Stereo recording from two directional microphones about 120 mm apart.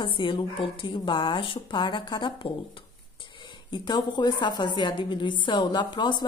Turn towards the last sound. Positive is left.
turn(degrees=40)  # may be behind; listen again after turning